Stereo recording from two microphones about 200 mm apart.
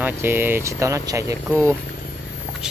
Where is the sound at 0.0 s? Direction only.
10° right (ahead or behind).